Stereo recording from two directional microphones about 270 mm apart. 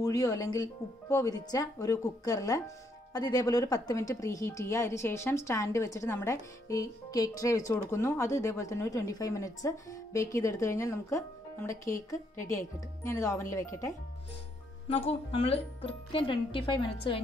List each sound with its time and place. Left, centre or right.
0.0 s speech: centre